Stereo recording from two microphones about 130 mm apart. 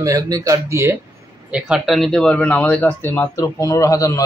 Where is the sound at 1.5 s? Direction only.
5° right (ahead or behind).